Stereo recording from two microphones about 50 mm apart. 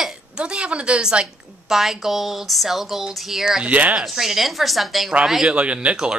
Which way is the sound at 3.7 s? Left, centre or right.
Right.